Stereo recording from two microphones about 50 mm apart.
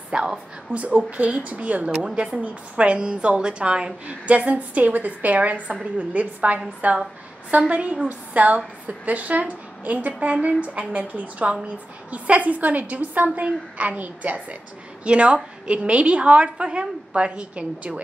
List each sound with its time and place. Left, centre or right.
0.1 s a woman's voice: centre